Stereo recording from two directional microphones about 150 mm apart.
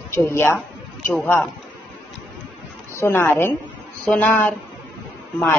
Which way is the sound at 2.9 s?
15° left (ahead or behind).